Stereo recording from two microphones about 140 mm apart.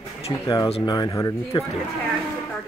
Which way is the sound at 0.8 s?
30° left (ahead or behind).